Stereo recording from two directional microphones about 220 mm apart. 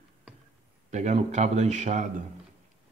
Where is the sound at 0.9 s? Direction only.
30° right (ahead or behind).